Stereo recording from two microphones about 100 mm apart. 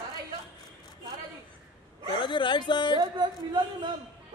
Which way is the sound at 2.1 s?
55° left (ahead or behind).